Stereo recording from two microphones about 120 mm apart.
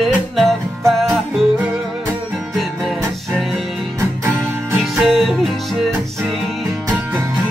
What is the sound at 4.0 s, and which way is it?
Music, 20° right (ahead or behind).